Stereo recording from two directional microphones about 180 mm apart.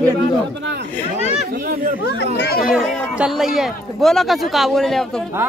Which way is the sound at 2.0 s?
70° left (ahead or behind).